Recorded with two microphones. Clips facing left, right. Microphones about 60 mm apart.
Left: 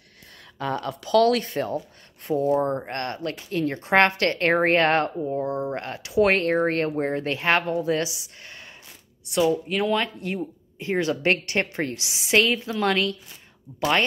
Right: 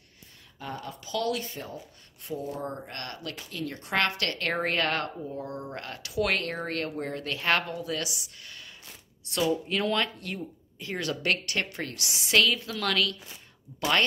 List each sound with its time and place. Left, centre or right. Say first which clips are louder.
0.6 s speech: left 10 dB; left
2.2 s speech: left 12 dB; left
9.5 s speech: left 4 dB; centre
10.2 s speech: left 7 dB; left